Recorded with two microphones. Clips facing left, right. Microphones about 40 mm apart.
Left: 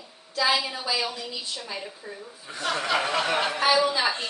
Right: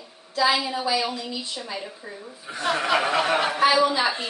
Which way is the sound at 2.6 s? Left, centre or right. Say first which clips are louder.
Right 3 dB; centre.